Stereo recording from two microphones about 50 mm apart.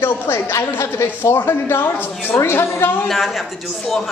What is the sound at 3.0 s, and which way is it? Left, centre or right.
Speech, centre.